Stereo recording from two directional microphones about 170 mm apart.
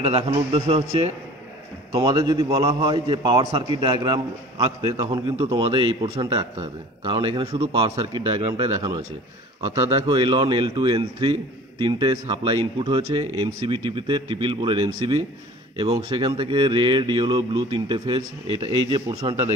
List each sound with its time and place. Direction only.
0.0 s a man's voice: 35° right (ahead or behind); by 5.4 s 15° right (ahead or behind)
5.4 s speech: 30° right (ahead or behind)